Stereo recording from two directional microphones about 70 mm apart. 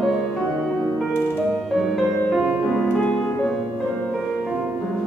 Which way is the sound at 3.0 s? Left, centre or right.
Centre.